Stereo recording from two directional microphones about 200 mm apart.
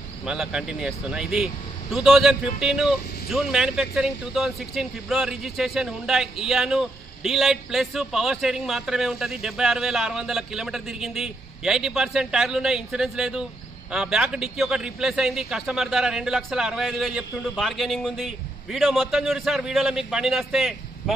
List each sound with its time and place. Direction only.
0.2 s speech: 5° right (ahead or behind)